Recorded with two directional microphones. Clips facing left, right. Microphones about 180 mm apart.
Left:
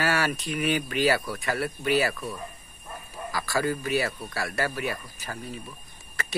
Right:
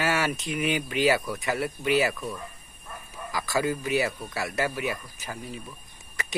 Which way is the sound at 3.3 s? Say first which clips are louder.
Even; 20° right (ahead or behind).